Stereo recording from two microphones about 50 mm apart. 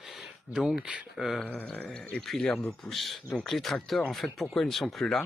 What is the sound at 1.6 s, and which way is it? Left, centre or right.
Speech, left.